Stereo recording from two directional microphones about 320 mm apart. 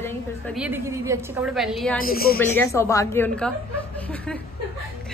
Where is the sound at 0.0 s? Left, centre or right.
Centre.